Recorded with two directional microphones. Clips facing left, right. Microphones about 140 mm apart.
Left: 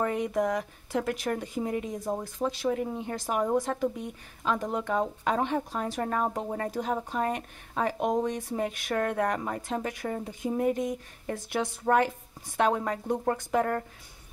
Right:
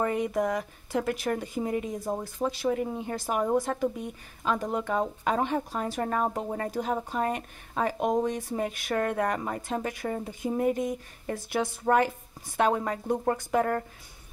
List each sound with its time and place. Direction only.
0.0 s speech: 5° right (ahead or behind)